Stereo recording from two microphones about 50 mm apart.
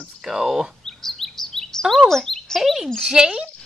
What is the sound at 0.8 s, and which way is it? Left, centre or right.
Bird vocalization, centre.